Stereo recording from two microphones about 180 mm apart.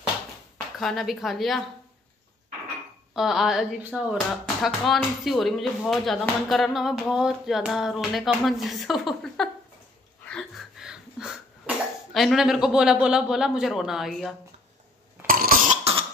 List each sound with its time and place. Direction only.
0.7 s speech: centre (ahead or behind)
3.2 s speech: centre (ahead or behind)
10.2 s cough: centre (ahead or behind)
15.2 s cough: 50° right (ahead or behind)